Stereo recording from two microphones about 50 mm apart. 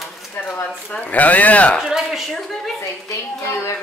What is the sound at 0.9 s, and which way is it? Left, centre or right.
Speech, left.